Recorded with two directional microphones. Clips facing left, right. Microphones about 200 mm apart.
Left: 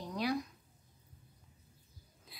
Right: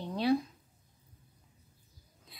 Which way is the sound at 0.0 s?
30° right (ahead or behind).